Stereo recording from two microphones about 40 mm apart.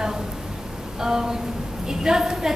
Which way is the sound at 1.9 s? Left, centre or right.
Centre.